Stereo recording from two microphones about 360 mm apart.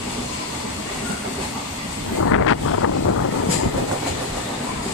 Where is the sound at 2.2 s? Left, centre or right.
Left.